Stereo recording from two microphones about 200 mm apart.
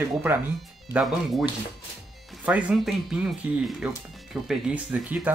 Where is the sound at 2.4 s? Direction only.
5° right (ahead or behind).